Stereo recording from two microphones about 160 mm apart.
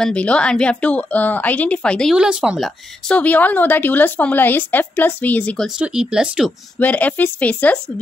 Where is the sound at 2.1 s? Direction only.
5° right (ahead or behind).